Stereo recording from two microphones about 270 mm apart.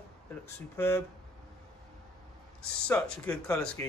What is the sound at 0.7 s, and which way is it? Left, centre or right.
Speech, centre.